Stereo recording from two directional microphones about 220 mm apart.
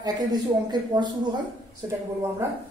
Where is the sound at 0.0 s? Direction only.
20° right (ahead or behind).